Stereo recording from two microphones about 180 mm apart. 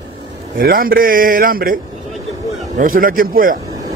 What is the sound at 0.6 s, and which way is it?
Speech, 55° right (ahead or behind).